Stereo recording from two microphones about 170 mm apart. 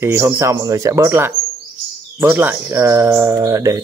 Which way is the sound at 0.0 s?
15° right (ahead or behind).